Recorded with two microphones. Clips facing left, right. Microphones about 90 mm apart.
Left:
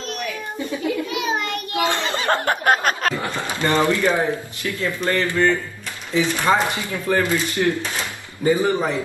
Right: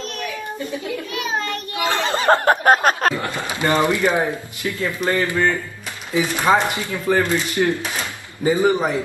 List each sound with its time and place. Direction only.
1.9 s speech: 35° right (ahead or behind)
3.3 s speech: 20° right (ahead or behind)